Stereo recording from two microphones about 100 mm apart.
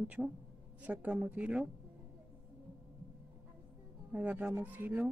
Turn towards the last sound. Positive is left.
turn(degrees=-15)  # may be behind; listen again after turning